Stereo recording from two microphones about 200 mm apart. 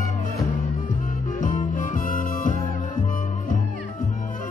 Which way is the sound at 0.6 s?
45° left (ahead or behind).